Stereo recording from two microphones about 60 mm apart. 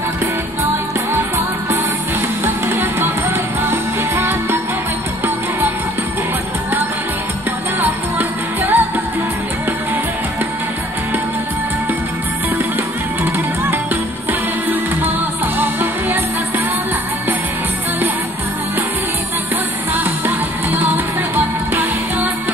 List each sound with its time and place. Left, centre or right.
2.4 s music: right
7.8 s music: right
15.6 s music: right
19.9 s music: right